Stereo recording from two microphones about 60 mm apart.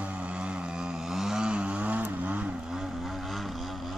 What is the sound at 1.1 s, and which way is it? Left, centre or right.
Vehicle, centre.